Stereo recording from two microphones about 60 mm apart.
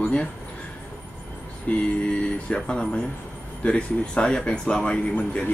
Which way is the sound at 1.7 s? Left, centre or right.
Left.